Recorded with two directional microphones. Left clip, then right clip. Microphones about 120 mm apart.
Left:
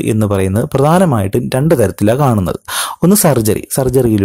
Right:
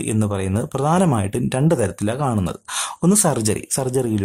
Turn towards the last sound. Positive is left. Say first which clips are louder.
# left 9 dB
turn(degrees=35)  # may be behind; listen again after turning